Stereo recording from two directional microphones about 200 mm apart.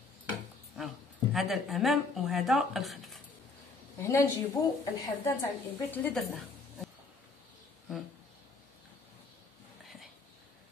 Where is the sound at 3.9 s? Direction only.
15° left (ahead or behind).